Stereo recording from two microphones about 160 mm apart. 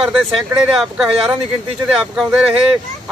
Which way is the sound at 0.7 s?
Centre (ahead or behind).